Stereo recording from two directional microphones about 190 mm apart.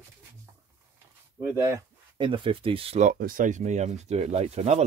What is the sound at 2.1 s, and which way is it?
Speech, 25° right (ahead or behind).